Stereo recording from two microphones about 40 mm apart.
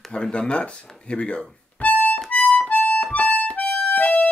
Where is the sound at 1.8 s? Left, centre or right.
Left.